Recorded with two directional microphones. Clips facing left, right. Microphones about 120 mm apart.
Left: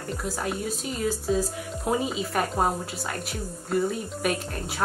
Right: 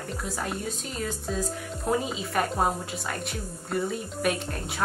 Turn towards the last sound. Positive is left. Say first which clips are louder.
# left 1 dB
turn(degrees=0)  # may be behind; listen again after turning